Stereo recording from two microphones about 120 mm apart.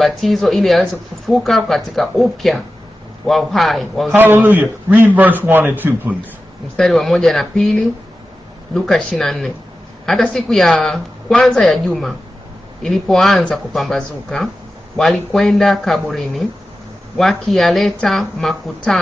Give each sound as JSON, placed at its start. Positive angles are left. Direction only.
{"t": 0.0, "sound": "speech", "side_deg": 0}
{"t": 4.1, "sound": "a man's voice", "side_deg": -15}
{"t": 6.8, "sound": "speech", "side_deg": 0}